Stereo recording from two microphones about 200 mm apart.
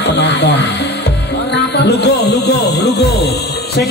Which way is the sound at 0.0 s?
60° left (ahead or behind).